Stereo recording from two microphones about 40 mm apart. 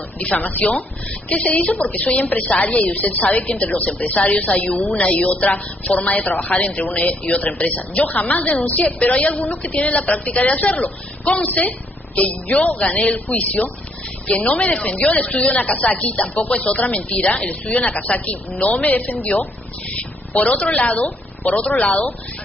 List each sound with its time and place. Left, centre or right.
0.2 s a woman's voice: left
4.6 s speech: left
5.1 s a woman's voice: left
8.8 s speech: left
9.2 s a woman's voice: left
18.8 s a woman's voice: left